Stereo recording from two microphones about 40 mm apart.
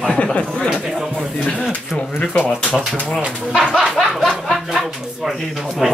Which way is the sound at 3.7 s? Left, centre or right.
Centre.